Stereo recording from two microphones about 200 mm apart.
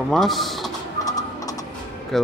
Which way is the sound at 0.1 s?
Centre (ahead or behind).